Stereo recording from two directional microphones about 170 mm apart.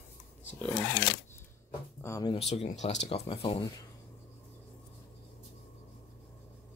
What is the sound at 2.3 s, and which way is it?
Speech, 35° left (ahead or behind).